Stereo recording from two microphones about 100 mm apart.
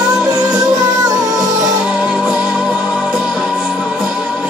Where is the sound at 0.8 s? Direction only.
40° right (ahead or behind).